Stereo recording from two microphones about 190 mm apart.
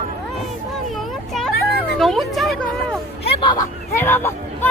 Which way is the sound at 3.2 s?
30° left (ahead or behind).